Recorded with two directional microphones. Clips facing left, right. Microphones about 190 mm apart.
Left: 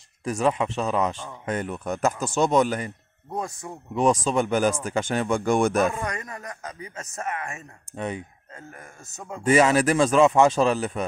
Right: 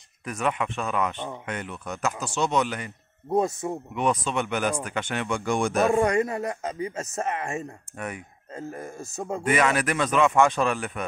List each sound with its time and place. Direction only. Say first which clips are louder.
0.3 s speech: left 4 dB; 30° left (ahead or behind)
3.3 s speech: right 8 dB; 25° right (ahead or behind)
3.9 s speech: left 6 dB; 40° left (ahead or behind)
5.9 s speech: right 10 dB; 30° right (ahead or behind)
9.5 s speech: left 5 dB; 30° left (ahead or behind)